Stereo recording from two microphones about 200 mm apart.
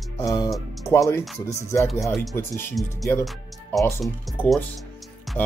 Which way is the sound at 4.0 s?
5° left (ahead or behind).